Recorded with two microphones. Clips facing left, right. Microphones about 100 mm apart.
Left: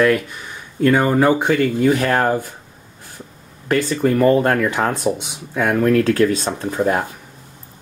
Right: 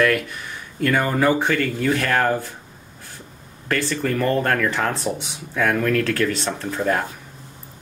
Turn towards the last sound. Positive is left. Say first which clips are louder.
# left 3 dB
turn(degrees=15)  # may be behind; listen again after turning